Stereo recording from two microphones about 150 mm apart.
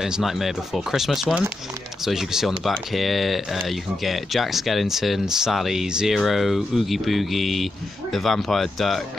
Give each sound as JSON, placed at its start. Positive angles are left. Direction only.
{"t": 0.0, "sound": "speech", "side_deg": 0}